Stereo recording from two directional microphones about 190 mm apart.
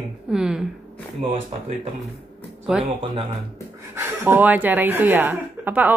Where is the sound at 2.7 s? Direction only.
5° right (ahead or behind).